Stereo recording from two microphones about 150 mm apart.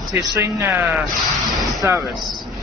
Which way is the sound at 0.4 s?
15° right (ahead or behind).